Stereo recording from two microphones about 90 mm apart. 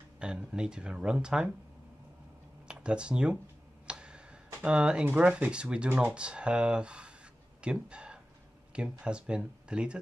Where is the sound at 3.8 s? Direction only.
10° right (ahead or behind).